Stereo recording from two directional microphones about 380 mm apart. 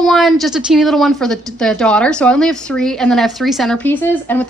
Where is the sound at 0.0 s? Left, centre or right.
Centre.